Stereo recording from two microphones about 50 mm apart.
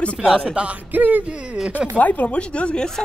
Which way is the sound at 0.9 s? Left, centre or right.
Right.